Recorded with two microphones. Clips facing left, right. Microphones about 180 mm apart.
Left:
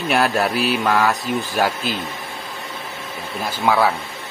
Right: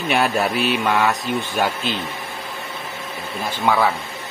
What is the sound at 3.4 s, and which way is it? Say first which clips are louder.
Speech: left 1 dB; 10° left (ahead or behind).